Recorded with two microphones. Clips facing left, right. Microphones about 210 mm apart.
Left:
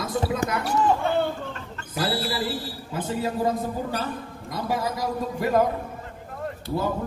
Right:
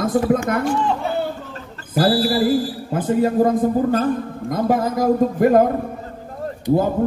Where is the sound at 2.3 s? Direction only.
50° right (ahead or behind).